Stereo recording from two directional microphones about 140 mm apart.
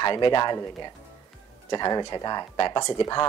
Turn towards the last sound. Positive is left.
turn(degrees=30)  # may be behind; listen again after turning